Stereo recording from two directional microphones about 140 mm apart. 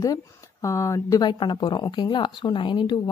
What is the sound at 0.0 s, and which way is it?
Speech, 25° left (ahead or behind).